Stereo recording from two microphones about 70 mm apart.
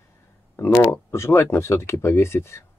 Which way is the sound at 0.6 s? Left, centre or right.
Left.